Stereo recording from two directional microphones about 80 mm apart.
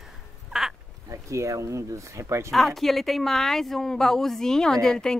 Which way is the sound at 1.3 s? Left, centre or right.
Right.